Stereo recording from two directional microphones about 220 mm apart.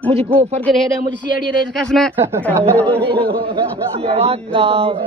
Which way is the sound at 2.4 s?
5° left (ahead or behind).